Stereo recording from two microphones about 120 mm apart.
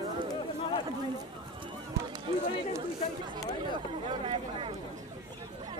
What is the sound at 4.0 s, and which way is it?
Speech, 45° right (ahead or behind).